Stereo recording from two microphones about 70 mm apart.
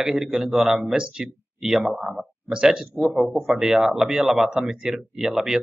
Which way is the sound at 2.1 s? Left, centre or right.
Right.